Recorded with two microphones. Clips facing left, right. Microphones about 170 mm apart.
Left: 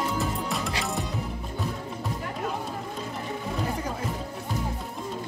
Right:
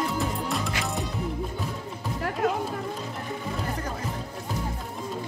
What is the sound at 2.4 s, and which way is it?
Music, 70° right (ahead or behind).